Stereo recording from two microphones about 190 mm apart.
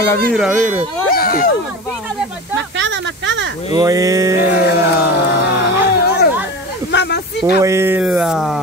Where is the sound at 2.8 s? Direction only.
75° right (ahead or behind).